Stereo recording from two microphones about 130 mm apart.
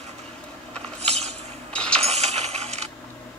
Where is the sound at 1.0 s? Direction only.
55° right (ahead or behind).